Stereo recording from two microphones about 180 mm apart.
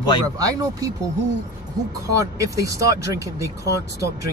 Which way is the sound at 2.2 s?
20° right (ahead or behind).